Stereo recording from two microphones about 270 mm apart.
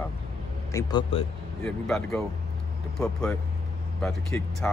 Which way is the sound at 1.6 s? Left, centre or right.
Centre.